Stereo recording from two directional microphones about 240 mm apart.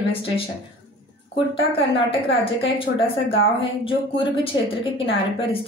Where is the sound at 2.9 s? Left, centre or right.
Left.